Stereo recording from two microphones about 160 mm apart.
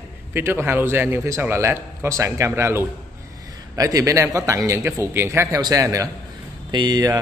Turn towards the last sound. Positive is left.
turn(degrees=-25)  # may be behind; listen again after turning